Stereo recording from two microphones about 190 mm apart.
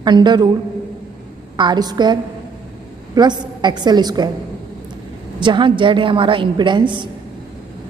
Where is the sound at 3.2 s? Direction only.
20° right (ahead or behind).